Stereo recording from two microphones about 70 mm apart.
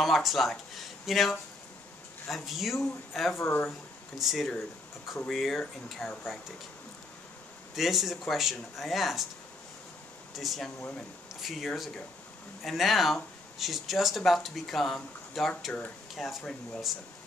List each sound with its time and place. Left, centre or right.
0.0 s speech: centre
3.3 s speech: left
4.2 s speech: centre
7.7 s speech: centre
10.3 s speech: centre